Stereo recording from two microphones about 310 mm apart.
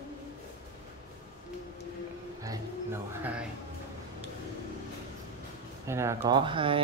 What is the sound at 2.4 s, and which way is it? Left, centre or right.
Music, centre.